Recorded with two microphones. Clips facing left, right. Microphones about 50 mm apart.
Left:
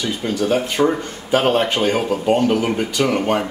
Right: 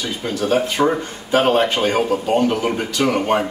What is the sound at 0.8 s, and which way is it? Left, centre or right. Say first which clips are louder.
Speech: even; centre.